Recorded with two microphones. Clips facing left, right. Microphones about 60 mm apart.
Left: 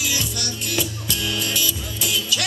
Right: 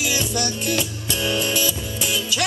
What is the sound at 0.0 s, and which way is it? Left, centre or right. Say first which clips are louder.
Music: right 4 dB; right.